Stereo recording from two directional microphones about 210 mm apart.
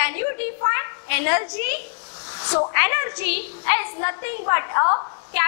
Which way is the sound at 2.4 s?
20° left (ahead or behind).